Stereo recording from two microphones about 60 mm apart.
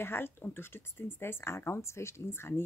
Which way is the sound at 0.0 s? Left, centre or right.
Left.